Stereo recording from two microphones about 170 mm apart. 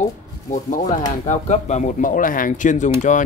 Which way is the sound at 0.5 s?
50° left (ahead or behind).